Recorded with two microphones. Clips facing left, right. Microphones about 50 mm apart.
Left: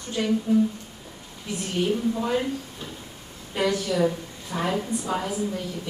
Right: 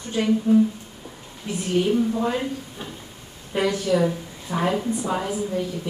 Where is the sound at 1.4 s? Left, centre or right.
Centre.